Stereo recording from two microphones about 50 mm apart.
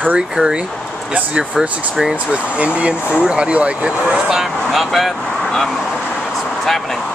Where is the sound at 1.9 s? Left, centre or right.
Centre.